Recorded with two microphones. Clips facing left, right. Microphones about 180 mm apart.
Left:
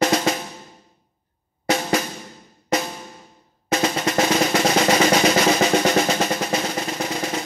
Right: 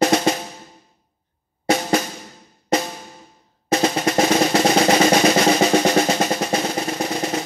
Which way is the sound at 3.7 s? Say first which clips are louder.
Right 3 dB; 35° right (ahead or behind).